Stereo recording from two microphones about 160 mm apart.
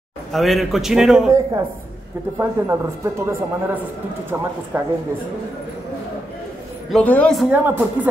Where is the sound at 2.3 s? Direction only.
15° right (ahead or behind).